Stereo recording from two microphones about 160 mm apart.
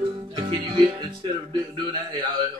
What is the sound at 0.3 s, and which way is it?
Music, 30° right (ahead or behind).